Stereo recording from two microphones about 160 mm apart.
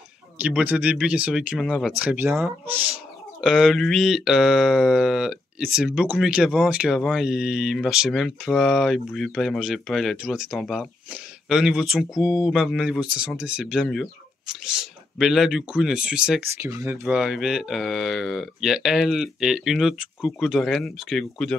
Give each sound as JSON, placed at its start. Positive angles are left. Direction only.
{"t": 0.4, "sound": "speech", "side_deg": -10}
{"t": 16.5, "sound": "speech", "side_deg": -15}
{"t": 17.1, "sound": "speech", "side_deg": 0}